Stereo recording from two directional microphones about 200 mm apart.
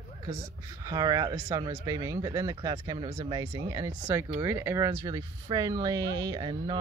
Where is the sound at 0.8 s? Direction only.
20° right (ahead or behind).